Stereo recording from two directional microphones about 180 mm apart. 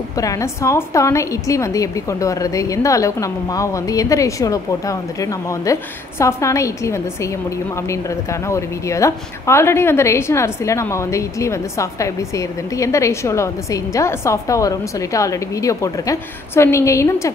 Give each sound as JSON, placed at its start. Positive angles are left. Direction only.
{"t": 0.2, "sound": "a woman's voice", "side_deg": 20}